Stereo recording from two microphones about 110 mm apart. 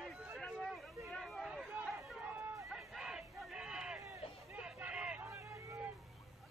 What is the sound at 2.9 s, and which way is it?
Crowd, 5° right (ahead or behind).